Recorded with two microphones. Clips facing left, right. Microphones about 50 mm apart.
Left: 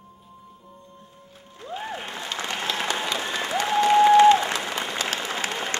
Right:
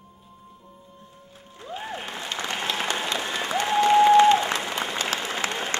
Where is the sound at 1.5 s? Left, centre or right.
Centre.